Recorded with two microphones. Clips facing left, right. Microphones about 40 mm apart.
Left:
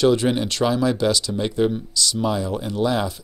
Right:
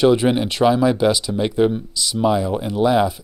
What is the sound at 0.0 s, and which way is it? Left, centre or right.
Speech, centre.